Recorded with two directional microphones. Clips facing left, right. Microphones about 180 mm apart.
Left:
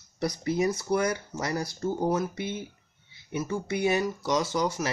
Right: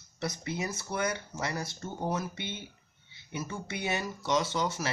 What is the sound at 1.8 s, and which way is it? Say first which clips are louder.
Speech: left 8 dB; 30° left (ahead or behind).